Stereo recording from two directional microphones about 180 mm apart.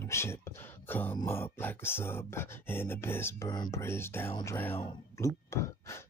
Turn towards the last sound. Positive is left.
turn(degrees=15)  # may be behind; listen again after turning